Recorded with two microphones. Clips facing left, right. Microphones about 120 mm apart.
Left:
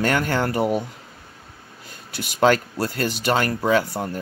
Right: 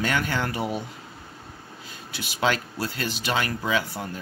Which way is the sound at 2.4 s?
45° left (ahead or behind).